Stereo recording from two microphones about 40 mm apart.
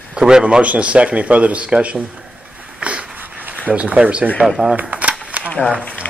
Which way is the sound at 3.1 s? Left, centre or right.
Right.